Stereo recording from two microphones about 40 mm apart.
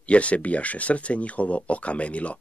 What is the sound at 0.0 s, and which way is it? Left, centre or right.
Speech, left.